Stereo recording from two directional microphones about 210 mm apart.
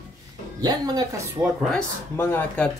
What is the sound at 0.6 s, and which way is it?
Speech, 20° right (ahead or behind).